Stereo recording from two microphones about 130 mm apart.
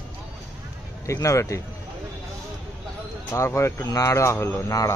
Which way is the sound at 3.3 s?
20° left (ahead or behind).